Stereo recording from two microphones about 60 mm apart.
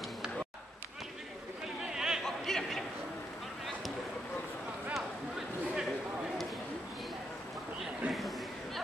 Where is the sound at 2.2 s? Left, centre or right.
Centre.